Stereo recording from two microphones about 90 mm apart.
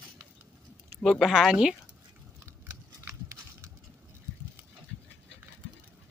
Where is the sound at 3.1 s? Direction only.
30° right (ahead or behind).